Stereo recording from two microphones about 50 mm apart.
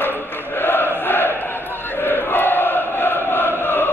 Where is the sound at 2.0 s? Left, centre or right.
Left.